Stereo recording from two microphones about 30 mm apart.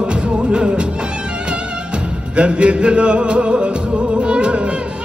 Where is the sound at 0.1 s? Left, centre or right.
Right.